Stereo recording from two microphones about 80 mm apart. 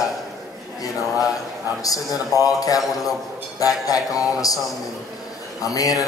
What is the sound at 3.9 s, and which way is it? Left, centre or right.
Speech, left.